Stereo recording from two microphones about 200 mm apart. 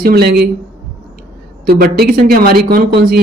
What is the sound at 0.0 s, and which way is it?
Speech, 50° right (ahead or behind).